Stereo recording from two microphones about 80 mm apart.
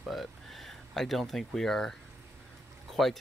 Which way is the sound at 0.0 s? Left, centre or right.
Centre.